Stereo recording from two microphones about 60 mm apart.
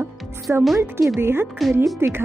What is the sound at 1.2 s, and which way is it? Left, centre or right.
Speech, right.